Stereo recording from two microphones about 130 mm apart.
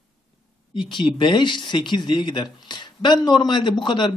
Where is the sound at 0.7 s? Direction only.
40° left (ahead or behind).